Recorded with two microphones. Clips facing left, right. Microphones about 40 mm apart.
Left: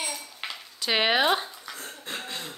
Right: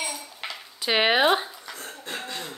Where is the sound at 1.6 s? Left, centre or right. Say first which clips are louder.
Right 1 dB; centre.